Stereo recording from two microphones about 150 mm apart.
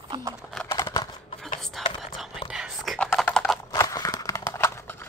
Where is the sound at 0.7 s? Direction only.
25° left (ahead or behind).